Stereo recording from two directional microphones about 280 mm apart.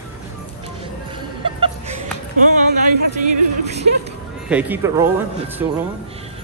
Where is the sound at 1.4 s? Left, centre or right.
Centre.